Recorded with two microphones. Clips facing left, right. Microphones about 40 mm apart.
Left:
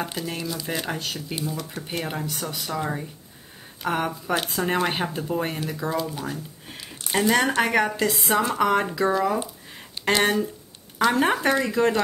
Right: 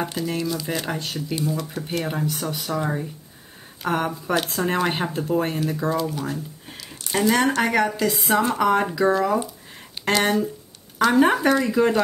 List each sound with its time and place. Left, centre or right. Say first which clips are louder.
0.0 s speech: right 4 dB; centre
6.8 s a sound: even; left
7.2 s speech: right 1 dB; centre